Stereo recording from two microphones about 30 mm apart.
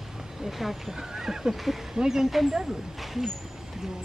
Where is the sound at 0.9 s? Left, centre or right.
Centre.